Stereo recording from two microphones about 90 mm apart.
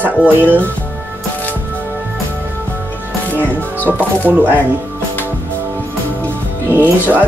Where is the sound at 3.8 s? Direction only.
20° right (ahead or behind).